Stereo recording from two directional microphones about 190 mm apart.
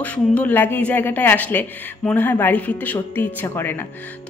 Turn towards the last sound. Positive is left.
turn(degrees=10)  # may be behind; listen again after turning